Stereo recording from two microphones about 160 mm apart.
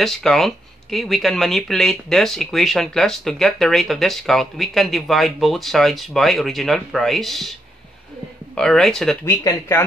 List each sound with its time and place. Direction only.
0.0 s speech: centre (ahead or behind)
8.5 s speech: 5° left (ahead or behind)
9.2 s speech: 15° left (ahead or behind)